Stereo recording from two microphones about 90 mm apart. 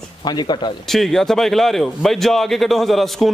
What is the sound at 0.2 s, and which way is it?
Speech, 55° left (ahead or behind).